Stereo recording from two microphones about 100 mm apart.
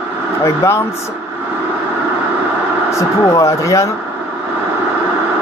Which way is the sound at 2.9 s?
30° left (ahead or behind).